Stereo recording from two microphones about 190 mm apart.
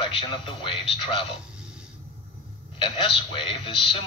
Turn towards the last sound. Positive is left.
turn(degrees=25)  # may be behind; listen again after turning